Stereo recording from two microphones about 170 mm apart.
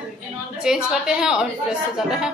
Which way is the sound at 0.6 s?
5° right (ahead or behind).